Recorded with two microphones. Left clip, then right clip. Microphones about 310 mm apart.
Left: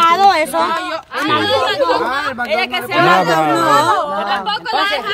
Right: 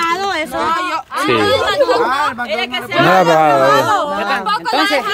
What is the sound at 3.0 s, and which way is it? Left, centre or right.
Speech, centre.